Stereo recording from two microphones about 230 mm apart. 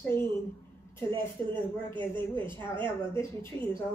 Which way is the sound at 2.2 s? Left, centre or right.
Right.